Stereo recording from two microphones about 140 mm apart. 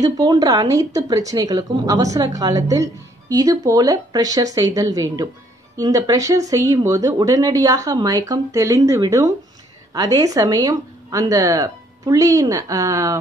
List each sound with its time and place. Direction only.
0.0 s a woman's voice: 30° right (ahead or behind)